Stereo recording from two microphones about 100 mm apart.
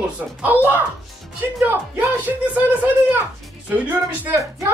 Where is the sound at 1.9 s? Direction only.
15° right (ahead or behind).